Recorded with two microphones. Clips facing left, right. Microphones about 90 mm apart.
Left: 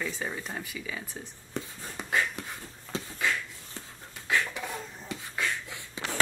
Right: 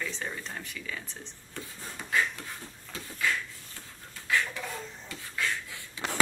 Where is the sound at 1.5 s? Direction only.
20° left (ahead or behind).